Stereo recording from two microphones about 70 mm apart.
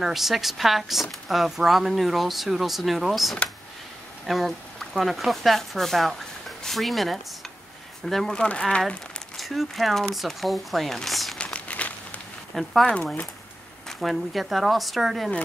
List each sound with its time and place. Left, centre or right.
0.0 s speech: centre
8.4 s speech: centre
9.4 s speech: centre
11.3 s crumpling: centre
12.5 s speech: centre